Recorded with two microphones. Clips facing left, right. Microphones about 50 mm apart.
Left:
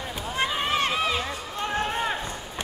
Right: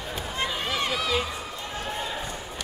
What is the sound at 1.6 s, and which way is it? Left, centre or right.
Run, left.